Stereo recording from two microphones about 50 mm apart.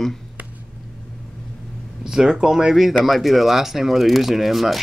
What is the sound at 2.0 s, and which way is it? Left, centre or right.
Speech, centre.